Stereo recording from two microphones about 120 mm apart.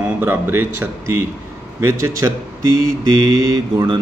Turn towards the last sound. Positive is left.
turn(degrees=-30)  # may be behind; listen again after turning